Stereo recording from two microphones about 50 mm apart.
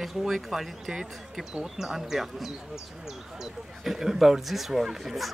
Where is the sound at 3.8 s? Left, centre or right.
Centre.